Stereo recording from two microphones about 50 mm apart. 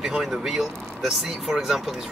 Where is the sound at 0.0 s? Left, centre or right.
Centre.